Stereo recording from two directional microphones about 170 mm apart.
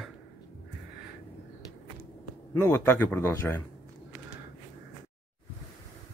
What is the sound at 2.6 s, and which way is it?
Speech, 15° left (ahead or behind).